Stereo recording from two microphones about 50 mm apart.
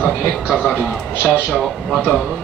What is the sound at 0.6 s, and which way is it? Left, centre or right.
Speech, right.